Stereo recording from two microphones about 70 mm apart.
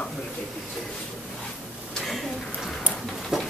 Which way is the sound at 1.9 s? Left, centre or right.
Centre.